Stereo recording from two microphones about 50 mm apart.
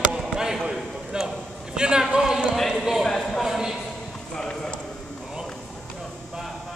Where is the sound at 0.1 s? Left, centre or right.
Centre.